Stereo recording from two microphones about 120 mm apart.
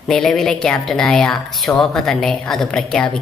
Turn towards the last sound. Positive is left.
turn(degrees=5)  # may be behind; listen again after turning